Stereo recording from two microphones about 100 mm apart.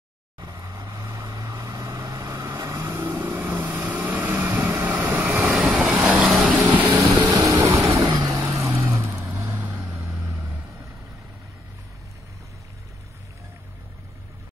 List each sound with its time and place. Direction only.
0.4 s vehicle: 40° right (ahead or behind); by 7.0 s 15° right (ahead or behind)
7.0 s vehicle: 35° right (ahead or behind)
8.7 s vehicle: 20° right (ahead or behind)